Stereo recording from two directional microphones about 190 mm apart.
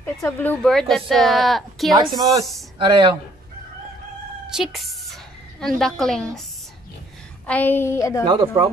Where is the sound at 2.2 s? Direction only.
20° right (ahead or behind).